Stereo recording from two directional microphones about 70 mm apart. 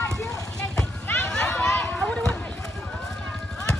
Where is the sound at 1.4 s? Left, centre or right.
Centre.